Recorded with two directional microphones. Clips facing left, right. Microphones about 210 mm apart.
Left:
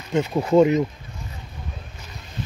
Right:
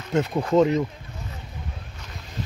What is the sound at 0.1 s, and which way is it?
Speech, 5° left (ahead or behind).